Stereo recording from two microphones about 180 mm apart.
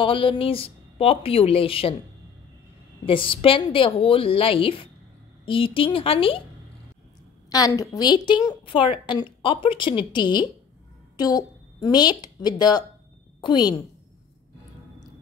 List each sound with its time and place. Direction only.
0.0 s speech: 30° left (ahead or behind)
3.1 s a woman's voice: 30° left (ahead or behind)
7.5 s a woman's voice: 20° left (ahead or behind)